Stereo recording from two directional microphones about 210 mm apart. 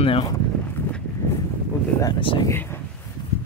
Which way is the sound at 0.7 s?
10° left (ahead or behind).